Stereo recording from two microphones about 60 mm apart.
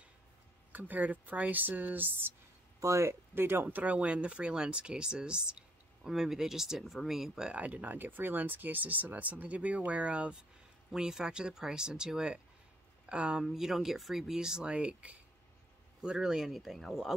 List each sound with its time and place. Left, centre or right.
0.7 s speech: right
2.8 s speech: right; by 13.5 s centre
13.5 s speech: centre